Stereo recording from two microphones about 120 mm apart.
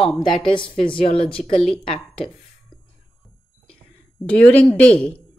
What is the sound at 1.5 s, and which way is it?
Speech, 5° left (ahead or behind).